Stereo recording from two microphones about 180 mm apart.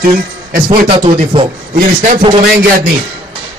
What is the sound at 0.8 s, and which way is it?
Speech, 30° right (ahead or behind).